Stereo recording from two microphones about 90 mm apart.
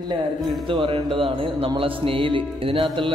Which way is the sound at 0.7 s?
80° right.